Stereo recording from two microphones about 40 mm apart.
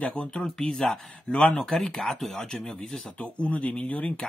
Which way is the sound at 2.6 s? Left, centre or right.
Left.